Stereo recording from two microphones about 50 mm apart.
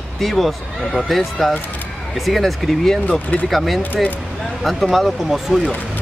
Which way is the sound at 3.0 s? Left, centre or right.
Left.